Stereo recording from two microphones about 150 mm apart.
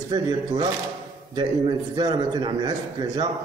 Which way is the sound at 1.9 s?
25° right (ahead or behind).